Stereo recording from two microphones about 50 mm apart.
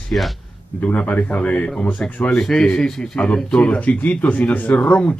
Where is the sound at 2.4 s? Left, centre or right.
Centre; by 5.1 s left.